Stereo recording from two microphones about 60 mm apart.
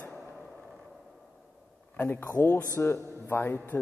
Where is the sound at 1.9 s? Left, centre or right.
Left.